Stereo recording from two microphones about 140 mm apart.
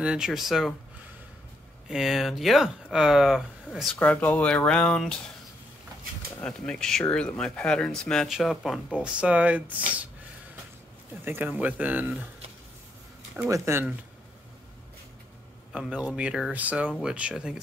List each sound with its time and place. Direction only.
0.0 s speech: 5° right (ahead or behind)
1.9 s speech: 5° right (ahead or behind)
3.9 s speech: 10° left (ahead or behind)
6.4 s speech: 5° left (ahead or behind); by 9.8 s 10° right (ahead or behind)
11.2 s speech: 15° right (ahead or behind)
13.4 s speech: 15° right (ahead or behind)
15.7 s speech: 5° right (ahead or behind)